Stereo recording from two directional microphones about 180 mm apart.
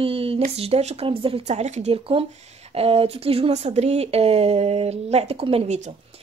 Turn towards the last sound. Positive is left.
turn(degrees=-40)  # may be behind; listen again after turning